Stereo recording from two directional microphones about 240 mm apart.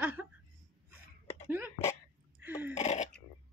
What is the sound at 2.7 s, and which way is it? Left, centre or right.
Speech, left.